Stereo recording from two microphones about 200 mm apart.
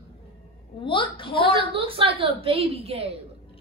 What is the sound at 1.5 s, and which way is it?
A woman's voice, 25° right (ahead or behind).